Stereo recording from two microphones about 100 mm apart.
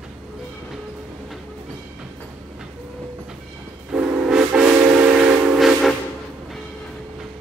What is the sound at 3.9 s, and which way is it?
Steam whistle, 5° right (ahead or behind).